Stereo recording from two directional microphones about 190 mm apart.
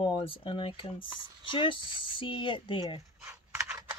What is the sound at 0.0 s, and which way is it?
Speech, 25° left (ahead or behind).